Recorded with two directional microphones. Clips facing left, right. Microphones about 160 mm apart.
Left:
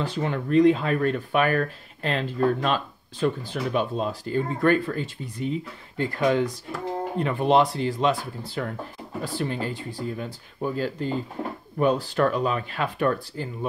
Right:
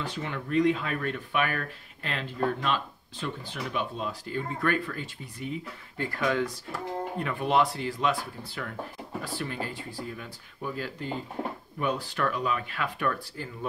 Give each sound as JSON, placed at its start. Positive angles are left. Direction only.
{"t": 0.0, "sound": "speech", "side_deg": 35}